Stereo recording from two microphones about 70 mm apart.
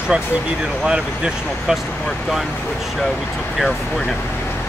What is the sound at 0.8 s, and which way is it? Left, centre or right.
Speech, centre.